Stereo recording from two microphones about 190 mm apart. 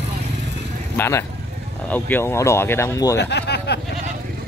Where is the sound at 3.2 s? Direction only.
60° left (ahead or behind).